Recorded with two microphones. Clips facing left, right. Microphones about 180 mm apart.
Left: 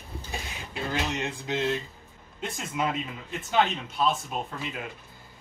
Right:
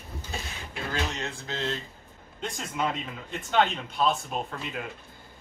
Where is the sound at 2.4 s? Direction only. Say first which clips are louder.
Even; 5° left (ahead or behind).